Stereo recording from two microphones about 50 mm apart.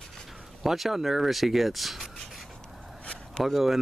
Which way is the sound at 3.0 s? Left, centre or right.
Left.